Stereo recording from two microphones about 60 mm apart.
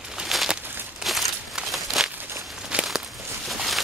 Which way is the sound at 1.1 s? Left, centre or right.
Centre.